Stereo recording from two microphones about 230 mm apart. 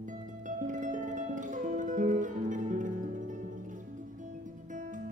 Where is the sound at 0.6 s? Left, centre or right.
Right.